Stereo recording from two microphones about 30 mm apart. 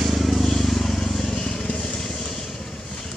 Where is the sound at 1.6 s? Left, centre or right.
Left.